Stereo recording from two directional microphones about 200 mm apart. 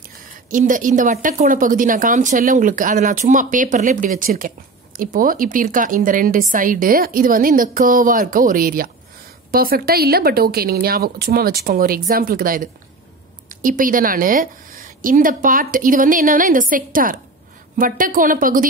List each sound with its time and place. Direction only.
0.5 s a woman's voice: 40° right (ahead or behind)